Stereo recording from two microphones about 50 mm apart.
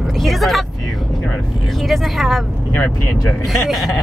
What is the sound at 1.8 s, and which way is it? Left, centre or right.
Speech, centre.